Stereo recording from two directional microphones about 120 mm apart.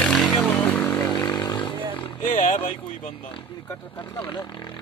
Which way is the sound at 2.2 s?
85° left.